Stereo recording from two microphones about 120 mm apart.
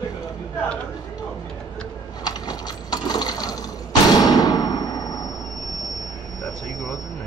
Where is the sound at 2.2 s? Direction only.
35° left (ahead or behind).